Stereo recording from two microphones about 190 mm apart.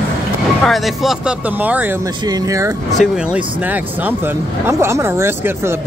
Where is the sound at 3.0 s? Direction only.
5° right (ahead or behind).